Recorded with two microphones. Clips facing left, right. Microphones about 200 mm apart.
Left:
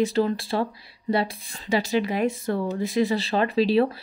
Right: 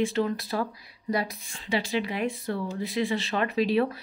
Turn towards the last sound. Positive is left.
turn(degrees=30)  # may be behind; listen again after turning